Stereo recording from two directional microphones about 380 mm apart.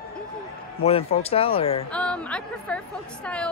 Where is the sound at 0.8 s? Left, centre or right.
Centre.